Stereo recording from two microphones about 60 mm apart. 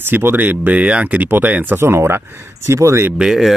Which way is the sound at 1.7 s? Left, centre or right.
Right.